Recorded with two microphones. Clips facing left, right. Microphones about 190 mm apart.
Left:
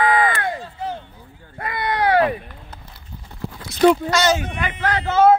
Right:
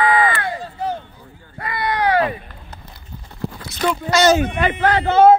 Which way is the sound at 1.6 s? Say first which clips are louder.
Right 1 dB; 55° left (ahead or behind).